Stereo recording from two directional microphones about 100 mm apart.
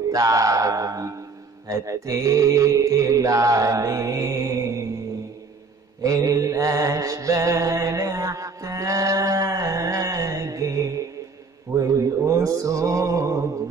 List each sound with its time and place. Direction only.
0.1 s mantra: 35° right (ahead or behind)
6.0 s mantra: 35° right (ahead or behind)